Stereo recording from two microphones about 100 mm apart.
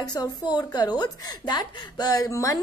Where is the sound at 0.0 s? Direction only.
40° left (ahead or behind).